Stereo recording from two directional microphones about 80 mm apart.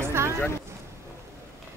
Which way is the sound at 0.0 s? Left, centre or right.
Right.